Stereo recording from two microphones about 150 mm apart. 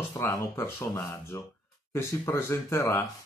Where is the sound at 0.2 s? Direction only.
20° left (ahead or behind).